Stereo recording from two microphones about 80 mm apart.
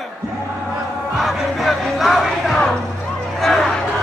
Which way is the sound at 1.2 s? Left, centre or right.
Centre.